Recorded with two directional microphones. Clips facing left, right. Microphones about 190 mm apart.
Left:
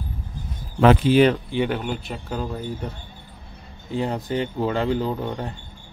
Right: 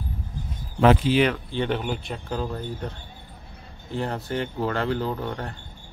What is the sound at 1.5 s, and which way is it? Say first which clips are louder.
Speech: left 2 dB; 10° left (ahead or behind).